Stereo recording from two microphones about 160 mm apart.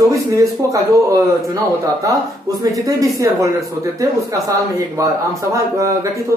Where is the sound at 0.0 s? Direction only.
20° right (ahead or behind).